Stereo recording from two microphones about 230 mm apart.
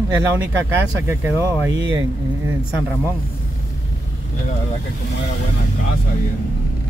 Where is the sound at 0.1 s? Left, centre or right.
Centre.